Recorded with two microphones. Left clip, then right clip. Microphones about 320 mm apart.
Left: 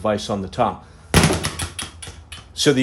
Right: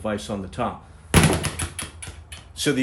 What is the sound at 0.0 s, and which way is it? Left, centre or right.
Speech, left.